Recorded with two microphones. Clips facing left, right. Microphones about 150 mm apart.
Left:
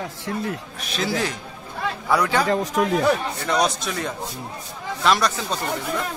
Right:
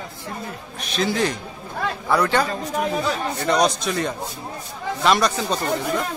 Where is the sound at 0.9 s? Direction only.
5° left (ahead or behind).